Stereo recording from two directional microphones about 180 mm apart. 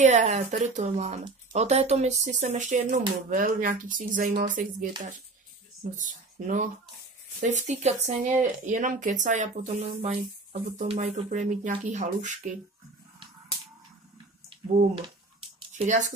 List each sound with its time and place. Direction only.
0.0 s speech: 40° right (ahead or behind)
5.9 s speech: 45° right (ahead or behind)
14.5 s a sound: 35° right (ahead or behind)
15.7 s speech: 45° right (ahead or behind)